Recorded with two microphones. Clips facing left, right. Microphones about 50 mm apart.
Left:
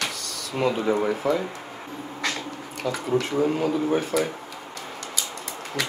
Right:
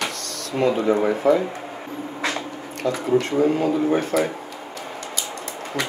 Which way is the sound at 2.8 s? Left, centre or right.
Centre.